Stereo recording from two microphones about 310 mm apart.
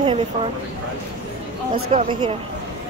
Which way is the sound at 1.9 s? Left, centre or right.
Centre.